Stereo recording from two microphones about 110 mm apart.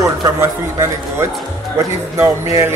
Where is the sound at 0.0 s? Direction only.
30° right (ahead or behind).